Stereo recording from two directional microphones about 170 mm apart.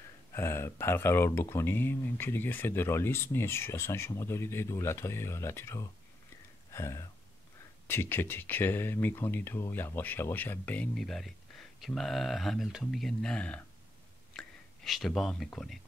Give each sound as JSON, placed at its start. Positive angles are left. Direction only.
{"t": 0.3, "sound": "speech", "side_deg": 15}
{"t": 6.7, "sound": "a sound", "side_deg": 15}
{"t": 7.8, "sound": "speech", "side_deg": 15}
{"t": 14.3, "sound": "whispering", "side_deg": 5}
{"t": 14.9, "sound": "speech", "side_deg": 0}